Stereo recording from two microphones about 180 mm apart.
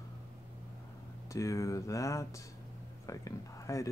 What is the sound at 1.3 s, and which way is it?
Speech, 15° left (ahead or behind).